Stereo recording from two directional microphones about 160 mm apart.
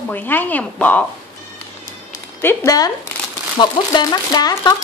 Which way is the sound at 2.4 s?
15° left (ahead or behind).